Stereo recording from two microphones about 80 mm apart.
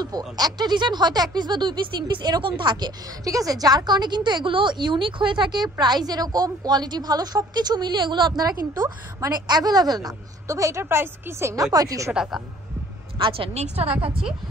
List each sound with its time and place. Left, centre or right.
0.4 s speech: right
3.3 s speech: right
11.5 s speech: right
12.1 s speech: centre
13.8 s a woman's voice: centre